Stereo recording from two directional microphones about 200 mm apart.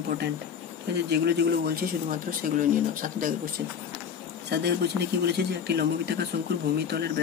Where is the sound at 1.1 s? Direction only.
55° right (ahead or behind).